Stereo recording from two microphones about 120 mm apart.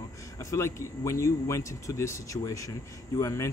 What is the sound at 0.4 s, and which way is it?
Speech, 25° left (ahead or behind).